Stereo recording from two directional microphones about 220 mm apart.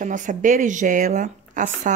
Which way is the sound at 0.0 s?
35° right (ahead or behind).